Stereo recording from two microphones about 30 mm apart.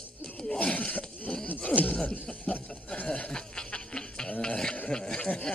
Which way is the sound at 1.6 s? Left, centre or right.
Left.